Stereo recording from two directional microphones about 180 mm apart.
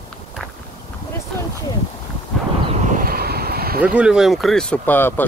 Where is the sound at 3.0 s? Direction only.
60° right (ahead or behind).